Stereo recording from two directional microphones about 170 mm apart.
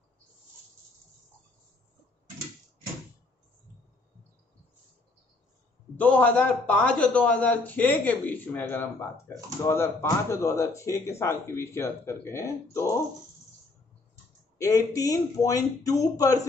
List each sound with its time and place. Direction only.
5.9 s a man's voice: 10° left (ahead or behind)
14.6 s speech: 20° left (ahead or behind)